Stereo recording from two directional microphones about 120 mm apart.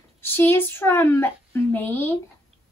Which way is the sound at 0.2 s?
20° left (ahead or behind).